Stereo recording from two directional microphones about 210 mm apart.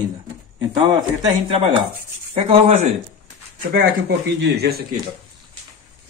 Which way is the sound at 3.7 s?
50° right (ahead or behind).